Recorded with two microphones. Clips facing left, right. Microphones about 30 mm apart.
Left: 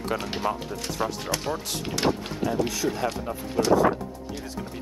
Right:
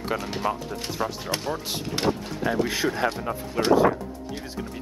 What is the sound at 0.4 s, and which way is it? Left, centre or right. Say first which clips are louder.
Speech: right 1 dB; centre.